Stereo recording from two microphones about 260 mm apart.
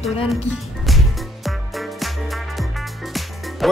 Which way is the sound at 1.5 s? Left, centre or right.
Centre.